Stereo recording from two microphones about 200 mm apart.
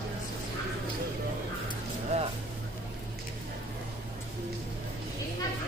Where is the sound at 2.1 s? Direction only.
30° right (ahead or behind).